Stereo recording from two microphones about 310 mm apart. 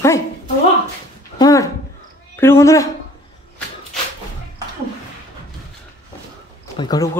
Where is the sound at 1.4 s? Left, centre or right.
Centre.